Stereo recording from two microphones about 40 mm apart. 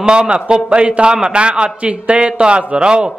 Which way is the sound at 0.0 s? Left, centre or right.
Right.